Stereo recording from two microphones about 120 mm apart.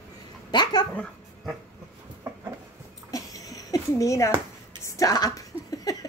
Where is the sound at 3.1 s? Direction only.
30° left (ahead or behind).